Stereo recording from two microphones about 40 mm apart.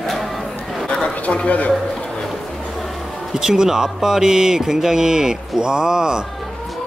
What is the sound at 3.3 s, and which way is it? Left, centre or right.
Speech, centre.